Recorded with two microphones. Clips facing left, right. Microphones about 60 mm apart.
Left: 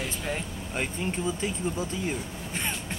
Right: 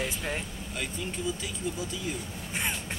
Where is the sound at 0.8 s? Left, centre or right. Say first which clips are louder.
Left 5 dB; left.